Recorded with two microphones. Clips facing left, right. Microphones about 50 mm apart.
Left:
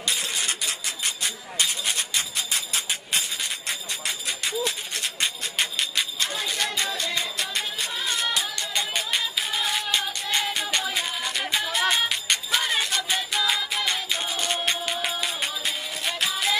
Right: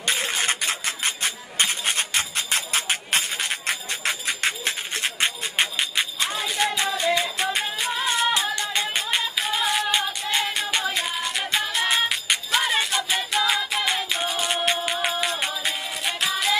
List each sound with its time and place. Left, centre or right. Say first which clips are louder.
0.0 s a sound: right 4 dB; right
4.9 s music: right 3 dB; right
5.6 s music: right 3 dB; right
6.9 s music: right 6 dB; centre
9.5 s music: right 5 dB; centre